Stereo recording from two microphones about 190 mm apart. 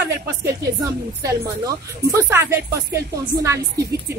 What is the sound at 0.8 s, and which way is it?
Speech, 15° right (ahead or behind).